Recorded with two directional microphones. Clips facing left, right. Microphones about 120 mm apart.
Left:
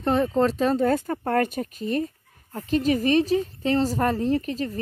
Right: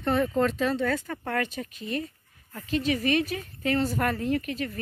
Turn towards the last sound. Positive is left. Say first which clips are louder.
# left 4 dB
turn(degrees=35)  # may be behind; listen again after turning